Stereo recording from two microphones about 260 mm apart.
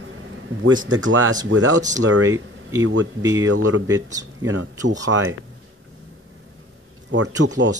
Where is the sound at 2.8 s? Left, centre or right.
Right.